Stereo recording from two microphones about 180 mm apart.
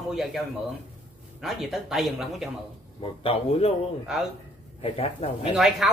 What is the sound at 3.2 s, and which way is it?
Speech, 30° left (ahead or behind).